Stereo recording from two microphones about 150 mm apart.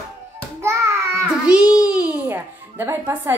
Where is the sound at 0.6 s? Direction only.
20° right (ahead or behind).